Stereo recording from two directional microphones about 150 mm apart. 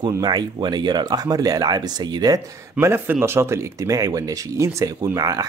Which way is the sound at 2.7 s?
15° right (ahead or behind).